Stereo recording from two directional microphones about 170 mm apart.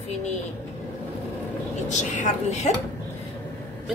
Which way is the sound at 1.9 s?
45° left (ahead or behind).